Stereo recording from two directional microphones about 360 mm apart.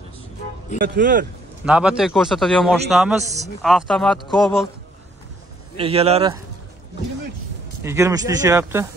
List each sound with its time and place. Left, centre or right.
0.7 s speech: right
1.7 s a man's voice: centre
5.8 s speech: centre
7.8 s speech: centre